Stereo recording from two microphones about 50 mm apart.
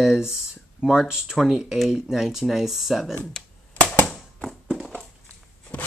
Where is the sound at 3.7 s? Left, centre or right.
Left.